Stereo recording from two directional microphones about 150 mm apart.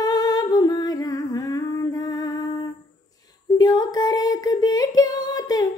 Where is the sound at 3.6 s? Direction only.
25° left (ahead or behind).